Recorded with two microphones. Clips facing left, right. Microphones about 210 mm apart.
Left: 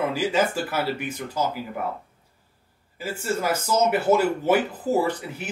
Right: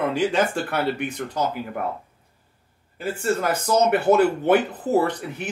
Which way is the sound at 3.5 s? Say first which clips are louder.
Right 1 dB; 60° right (ahead or behind).